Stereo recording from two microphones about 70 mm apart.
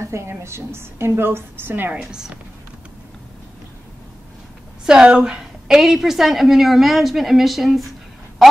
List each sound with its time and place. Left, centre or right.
0.0 s a woman's voice: right
2.0 s a woman's voice: centre
4.8 s a woman's voice: centre